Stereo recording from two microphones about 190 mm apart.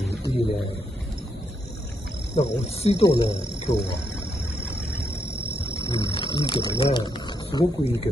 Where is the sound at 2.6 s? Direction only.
35° left (ahead or behind).